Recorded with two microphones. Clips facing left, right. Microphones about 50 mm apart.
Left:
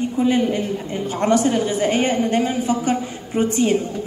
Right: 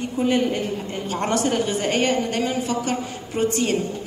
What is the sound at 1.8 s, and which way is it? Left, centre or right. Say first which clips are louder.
A woman's voice: left 3 dB; left.